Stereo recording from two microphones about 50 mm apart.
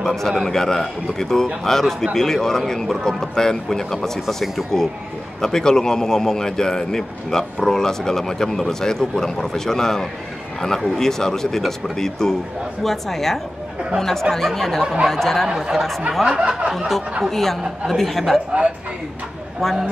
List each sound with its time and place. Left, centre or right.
0.0 s speech: centre
15.4 s speech: centre
16.3 s a sound: right
16.7 s speech: centre
19.6 s speech: centre